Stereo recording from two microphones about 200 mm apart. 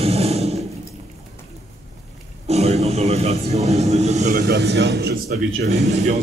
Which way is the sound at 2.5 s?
30° right (ahead or behind).